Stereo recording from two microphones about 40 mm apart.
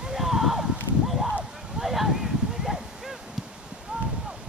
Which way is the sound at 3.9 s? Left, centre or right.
Right.